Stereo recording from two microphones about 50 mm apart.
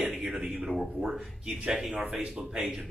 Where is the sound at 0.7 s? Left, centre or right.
Centre.